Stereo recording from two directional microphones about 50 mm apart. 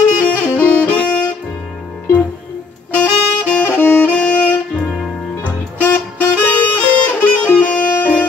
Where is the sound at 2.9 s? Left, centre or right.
Left.